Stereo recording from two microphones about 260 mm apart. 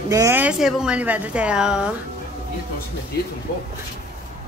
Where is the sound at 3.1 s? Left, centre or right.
Left.